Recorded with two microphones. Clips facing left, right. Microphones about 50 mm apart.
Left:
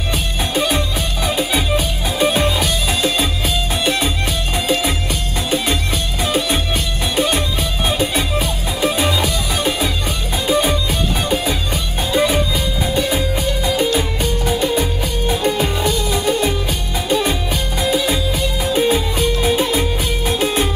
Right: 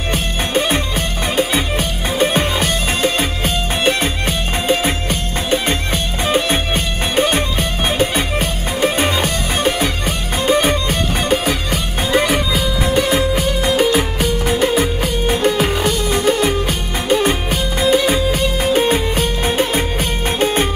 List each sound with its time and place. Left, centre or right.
0.1 s music: right
13.7 s music: right
15.4 s music: right